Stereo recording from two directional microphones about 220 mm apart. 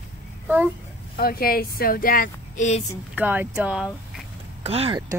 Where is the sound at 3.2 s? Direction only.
10° right (ahead or behind).